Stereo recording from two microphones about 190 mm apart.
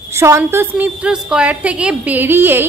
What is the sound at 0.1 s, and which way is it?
A woman's voice, 15° right (ahead or behind).